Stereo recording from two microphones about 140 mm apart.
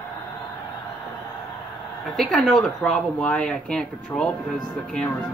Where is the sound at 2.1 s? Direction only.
5° left (ahead or behind).